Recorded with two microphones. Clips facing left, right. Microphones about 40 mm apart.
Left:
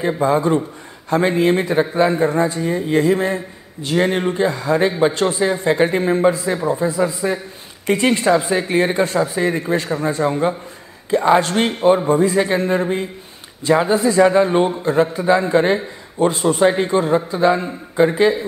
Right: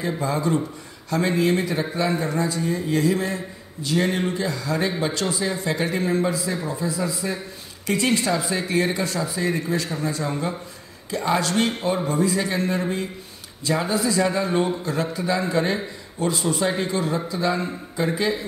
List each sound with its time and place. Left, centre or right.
0.0 s a man's voice: left